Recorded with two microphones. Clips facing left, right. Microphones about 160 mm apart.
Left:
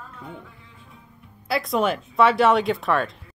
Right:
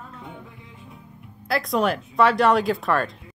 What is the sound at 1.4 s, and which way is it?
Speech, centre (ahead or behind).